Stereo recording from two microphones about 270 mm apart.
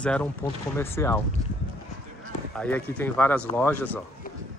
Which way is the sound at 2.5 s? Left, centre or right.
Centre.